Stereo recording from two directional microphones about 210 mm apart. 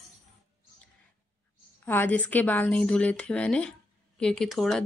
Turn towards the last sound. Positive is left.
turn(degrees=0)  # may be behind; listen again after turning